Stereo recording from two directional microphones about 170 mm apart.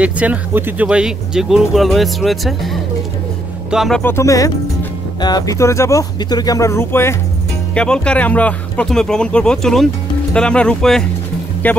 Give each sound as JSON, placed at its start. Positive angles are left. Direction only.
{"t": 0.0, "sound": "speech", "side_deg": -10}
{"t": 4.0, "sound": "speech", "side_deg": 15}